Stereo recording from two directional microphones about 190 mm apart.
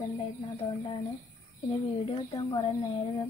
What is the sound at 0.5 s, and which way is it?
Speech, 30° left (ahead or behind).